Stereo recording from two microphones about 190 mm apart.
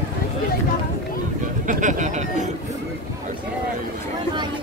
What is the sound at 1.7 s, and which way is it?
Speech, 40° right (ahead or behind).